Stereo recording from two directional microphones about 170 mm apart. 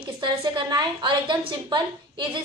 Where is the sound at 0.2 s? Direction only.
30° right (ahead or behind).